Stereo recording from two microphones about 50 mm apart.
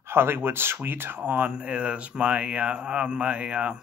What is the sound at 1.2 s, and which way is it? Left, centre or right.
Speech, right.